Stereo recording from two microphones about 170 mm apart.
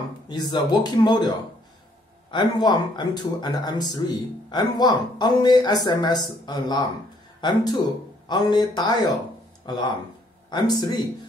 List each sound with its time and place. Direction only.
0.3 s speech: 25° left (ahead or behind)
2.3 s speech: 25° left (ahead or behind)